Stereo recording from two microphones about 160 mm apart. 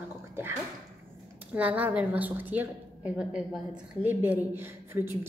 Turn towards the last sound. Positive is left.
turn(degrees=-15)  # may be behind; listen again after turning